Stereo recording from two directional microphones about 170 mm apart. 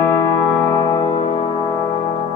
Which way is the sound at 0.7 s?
25° left (ahead or behind).